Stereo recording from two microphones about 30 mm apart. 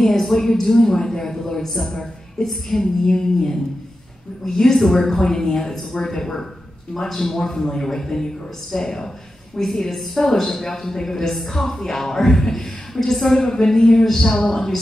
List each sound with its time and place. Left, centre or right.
0.0 s a woman's voice: centre